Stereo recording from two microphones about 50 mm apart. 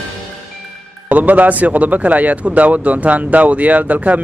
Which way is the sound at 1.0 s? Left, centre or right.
Right.